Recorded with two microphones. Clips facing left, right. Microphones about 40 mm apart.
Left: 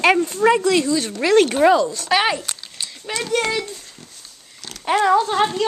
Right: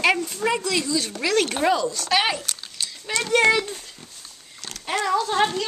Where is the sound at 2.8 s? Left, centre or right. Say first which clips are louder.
Even; centre.